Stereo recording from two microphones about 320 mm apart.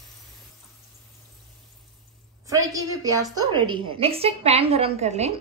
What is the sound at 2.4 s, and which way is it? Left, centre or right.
A woman's voice, centre.